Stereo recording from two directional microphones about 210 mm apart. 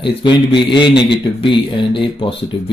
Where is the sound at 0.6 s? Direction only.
25° left (ahead or behind).